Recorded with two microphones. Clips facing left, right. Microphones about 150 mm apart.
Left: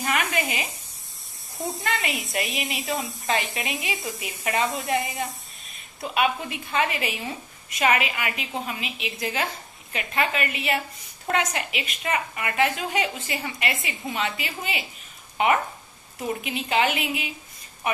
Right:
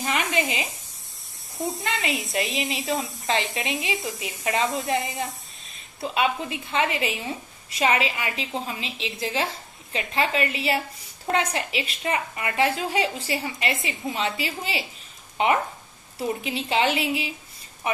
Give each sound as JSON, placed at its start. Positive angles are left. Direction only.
{"t": 0.0, "sound": "sizzle", "side_deg": -20}
{"t": 1.6, "sound": "speech", "side_deg": 0}
{"t": 1.9, "sound": "a woman's voice", "side_deg": -20}
{"t": 2.8, "sound": "speech", "side_deg": 0}
{"t": 3.3, "sound": "a woman's voice", "side_deg": -20}
{"t": 3.9, "sound": "speech", "side_deg": 0}
{"t": 4.2, "sound": "a woman's voice", "side_deg": -25}